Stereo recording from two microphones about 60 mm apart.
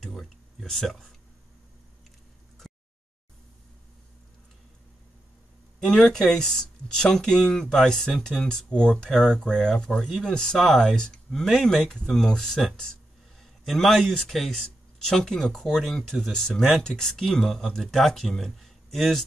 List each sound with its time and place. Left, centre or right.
0.0 s speech: centre
2.6 s a sound: centre
5.8 s a man's voice: centre